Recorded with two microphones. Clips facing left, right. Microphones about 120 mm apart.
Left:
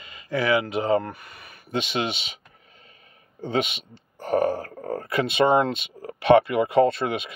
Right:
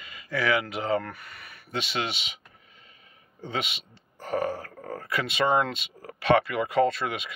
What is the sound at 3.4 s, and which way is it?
A man's voice, 35° left (ahead or behind).